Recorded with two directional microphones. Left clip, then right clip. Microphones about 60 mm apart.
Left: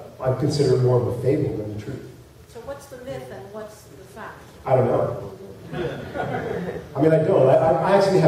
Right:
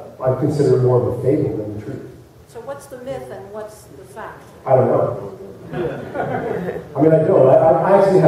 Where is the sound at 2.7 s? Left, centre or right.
Centre.